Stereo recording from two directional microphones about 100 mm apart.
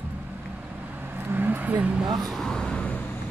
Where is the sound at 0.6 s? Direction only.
15° right (ahead or behind).